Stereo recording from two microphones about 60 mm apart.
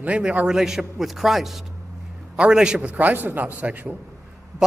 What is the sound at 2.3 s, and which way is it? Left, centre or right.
A man's voice, centre.